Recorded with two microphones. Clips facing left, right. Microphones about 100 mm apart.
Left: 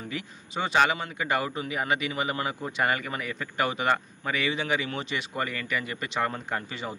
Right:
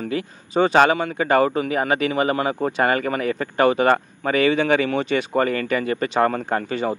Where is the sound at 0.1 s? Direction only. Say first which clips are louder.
Right 13 dB; 45° right (ahead or behind).